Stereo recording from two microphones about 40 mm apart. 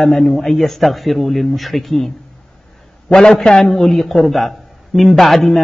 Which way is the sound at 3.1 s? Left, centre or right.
Centre.